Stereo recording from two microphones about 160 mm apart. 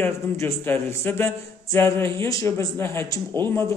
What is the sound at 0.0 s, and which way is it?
Speech, 15° left (ahead or behind).